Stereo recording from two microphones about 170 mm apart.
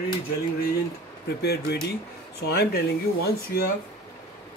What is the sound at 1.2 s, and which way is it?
Speech, 70° left (ahead or behind).